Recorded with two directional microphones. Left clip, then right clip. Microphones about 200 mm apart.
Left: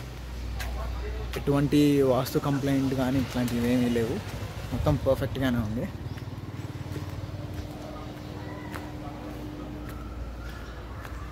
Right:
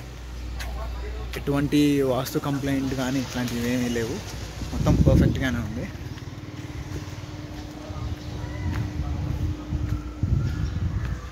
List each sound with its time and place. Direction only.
1.3 s speech: 5° left (ahead or behind)
4.8 s speech: 15° left (ahead or behind)